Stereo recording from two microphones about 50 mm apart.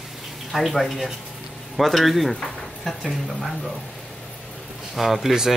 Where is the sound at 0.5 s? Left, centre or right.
Centre.